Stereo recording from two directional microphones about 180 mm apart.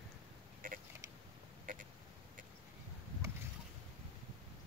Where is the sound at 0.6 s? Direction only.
50° right (ahead or behind).